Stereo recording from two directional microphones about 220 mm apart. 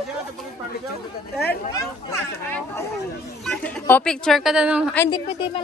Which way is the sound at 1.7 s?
10° left (ahead or behind).